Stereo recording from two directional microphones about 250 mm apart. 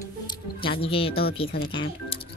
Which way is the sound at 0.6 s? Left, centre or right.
Left.